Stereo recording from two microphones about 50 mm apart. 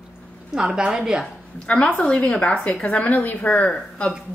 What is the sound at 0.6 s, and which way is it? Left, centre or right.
Speech, centre.